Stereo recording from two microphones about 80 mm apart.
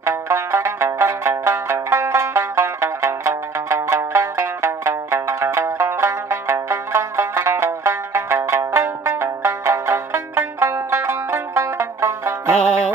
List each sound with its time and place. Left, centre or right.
0.0 s music: right